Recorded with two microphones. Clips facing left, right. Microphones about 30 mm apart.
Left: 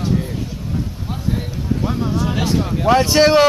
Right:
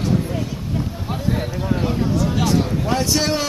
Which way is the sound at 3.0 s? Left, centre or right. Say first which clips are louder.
Left 10 dB; left.